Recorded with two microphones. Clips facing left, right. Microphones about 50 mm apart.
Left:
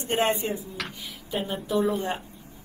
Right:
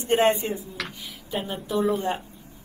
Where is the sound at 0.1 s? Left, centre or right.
Right.